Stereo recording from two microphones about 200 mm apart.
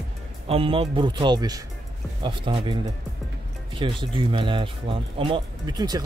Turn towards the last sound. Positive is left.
turn(degrees=-20)  # may be behind; listen again after turning